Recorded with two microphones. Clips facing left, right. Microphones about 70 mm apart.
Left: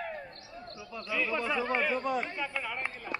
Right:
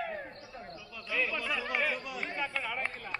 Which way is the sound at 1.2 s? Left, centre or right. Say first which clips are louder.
Left 4 dB; left.